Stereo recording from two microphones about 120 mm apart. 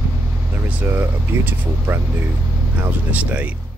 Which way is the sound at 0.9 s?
20° right (ahead or behind).